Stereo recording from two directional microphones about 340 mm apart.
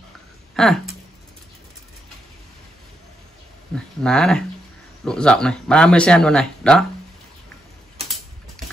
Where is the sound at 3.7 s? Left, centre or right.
Centre.